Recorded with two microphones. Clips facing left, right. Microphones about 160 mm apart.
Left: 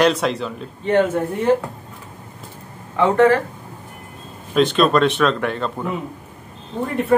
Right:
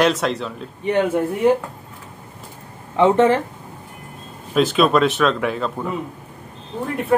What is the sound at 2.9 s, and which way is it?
Speech, 20° right (ahead or behind).